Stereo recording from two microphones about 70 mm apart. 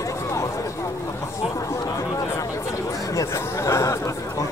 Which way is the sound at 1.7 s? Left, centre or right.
Left.